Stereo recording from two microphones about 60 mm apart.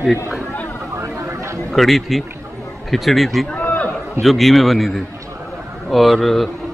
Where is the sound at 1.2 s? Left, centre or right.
Right.